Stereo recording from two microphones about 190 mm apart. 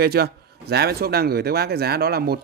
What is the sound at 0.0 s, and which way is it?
A man's voice, 55° right (ahead or behind).